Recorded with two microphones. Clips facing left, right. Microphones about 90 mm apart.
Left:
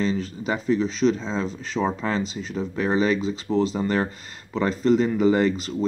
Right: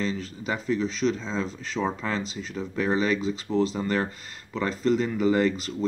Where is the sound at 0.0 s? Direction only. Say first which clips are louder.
Left 5 dB; 15° left (ahead or behind).